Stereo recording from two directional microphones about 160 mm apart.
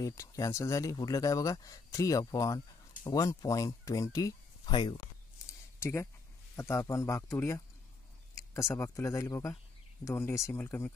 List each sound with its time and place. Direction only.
0.0 s speech: 20° left (ahead or behind)
5.5 s a sound: 15° left (ahead or behind)
6.5 s speech: 20° left (ahead or behind)